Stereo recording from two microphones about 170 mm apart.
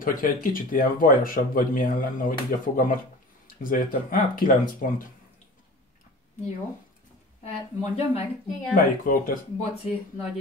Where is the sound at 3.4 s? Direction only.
55° left (ahead or behind).